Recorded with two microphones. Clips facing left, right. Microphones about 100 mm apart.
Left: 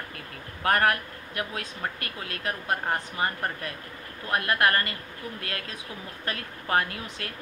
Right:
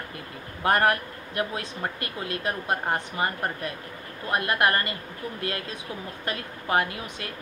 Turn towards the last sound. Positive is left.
turn(degrees=-15)  # may be behind; listen again after turning